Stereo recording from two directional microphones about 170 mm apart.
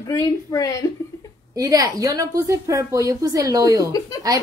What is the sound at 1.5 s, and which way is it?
A woman's voice, 20° right (ahead or behind).